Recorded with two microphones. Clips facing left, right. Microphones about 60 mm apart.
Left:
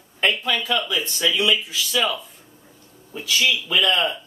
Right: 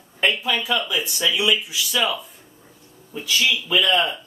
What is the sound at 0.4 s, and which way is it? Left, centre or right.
Speech, centre.